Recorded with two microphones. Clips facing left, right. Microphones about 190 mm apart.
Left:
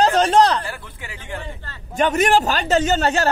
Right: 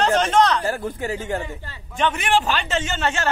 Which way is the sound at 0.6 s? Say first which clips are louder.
Right 10 dB; 40° right (ahead or behind).